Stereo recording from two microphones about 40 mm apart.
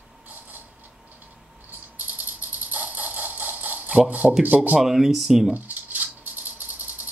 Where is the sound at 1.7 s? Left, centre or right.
Right.